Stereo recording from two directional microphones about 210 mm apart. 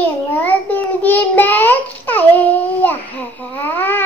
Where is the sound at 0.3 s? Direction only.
10° left (ahead or behind).